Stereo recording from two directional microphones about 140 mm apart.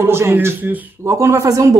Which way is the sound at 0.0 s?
15° right (ahead or behind).